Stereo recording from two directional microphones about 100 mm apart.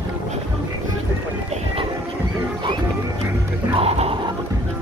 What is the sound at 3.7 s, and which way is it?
Music, 85° right.